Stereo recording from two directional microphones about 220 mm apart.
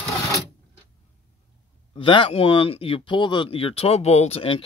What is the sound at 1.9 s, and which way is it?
Speech, 20° left (ahead or behind).